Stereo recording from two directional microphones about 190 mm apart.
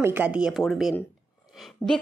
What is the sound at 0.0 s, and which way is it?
A woman's voice, 10° right (ahead or behind).